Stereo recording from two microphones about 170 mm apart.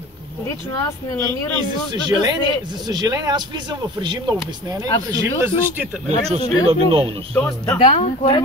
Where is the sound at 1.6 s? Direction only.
25° right (ahead or behind).